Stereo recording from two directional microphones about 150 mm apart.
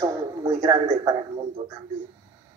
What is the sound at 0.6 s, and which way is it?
Speech, 55° right (ahead or behind).